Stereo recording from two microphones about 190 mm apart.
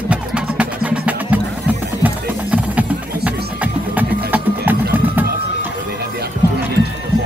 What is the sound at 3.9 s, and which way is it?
Music, 10° right (ahead or behind).